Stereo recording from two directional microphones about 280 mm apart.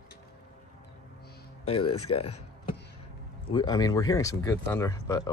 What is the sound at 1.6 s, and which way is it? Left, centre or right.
Speech, centre.